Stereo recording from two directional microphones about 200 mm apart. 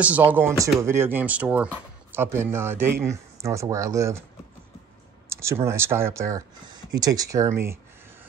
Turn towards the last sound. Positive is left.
turn(degrees=-15)  # may be behind; listen again after turning